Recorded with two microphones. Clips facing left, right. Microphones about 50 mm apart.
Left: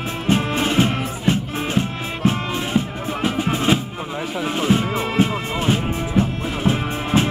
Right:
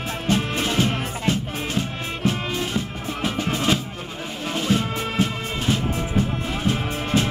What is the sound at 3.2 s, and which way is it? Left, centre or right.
Music, centre.